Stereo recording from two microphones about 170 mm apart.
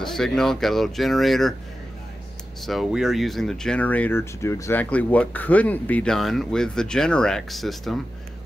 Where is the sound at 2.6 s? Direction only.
Centre (ahead or behind).